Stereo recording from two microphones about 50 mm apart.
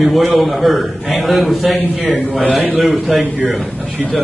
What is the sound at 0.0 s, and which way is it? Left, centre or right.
A man's voice, centre.